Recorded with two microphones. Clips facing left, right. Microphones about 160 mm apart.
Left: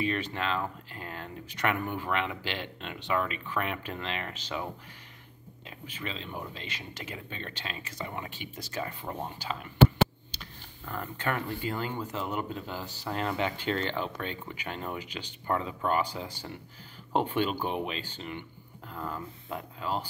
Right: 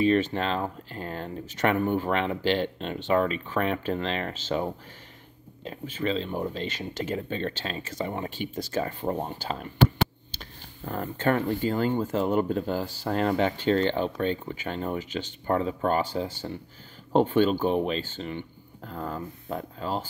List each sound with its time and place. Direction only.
0.0 s speech: 30° right (ahead or behind)
10.4 s a sound: 35° right (ahead or behind)
11.1 s speech: 25° right (ahead or behind)
11.4 s speech: 40° right (ahead or behind)
12.0 s speech: 50° right (ahead or behind)